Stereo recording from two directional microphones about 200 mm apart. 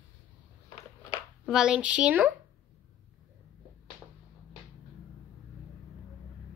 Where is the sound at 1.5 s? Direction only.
5° right (ahead or behind).